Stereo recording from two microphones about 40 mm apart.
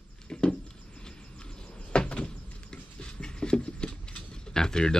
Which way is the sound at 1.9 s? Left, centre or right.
Left.